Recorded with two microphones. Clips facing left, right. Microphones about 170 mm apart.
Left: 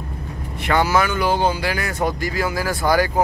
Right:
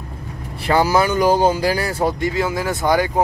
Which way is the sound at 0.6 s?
35° right (ahead or behind).